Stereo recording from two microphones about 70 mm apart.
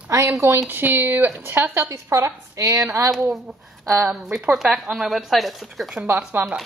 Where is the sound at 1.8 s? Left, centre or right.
Right.